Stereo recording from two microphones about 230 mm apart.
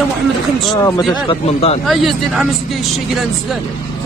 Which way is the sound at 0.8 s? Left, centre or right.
Centre.